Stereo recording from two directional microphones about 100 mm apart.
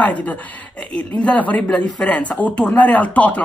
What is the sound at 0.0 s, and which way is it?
Speech, 15° left (ahead or behind).